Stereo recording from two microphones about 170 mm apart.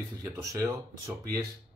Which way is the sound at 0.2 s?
20° right (ahead or behind).